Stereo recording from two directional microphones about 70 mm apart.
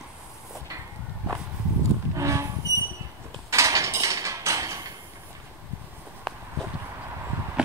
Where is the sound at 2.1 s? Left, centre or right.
Right.